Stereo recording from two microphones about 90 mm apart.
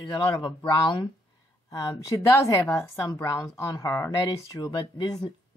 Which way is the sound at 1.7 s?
40° left (ahead or behind).